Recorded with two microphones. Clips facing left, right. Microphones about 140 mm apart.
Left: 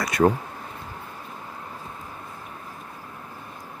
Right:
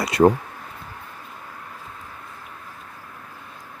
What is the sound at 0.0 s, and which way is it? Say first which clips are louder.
Speech: right 4 dB; 30° right (ahead or behind).